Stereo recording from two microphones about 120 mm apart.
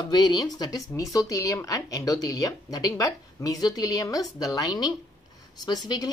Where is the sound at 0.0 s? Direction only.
40° left (ahead or behind).